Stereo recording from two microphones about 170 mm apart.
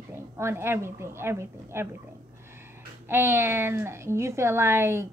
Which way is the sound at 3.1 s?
15° right (ahead or behind).